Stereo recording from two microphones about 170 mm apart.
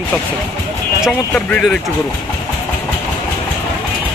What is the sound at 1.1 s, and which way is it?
Speech, 5° left (ahead or behind).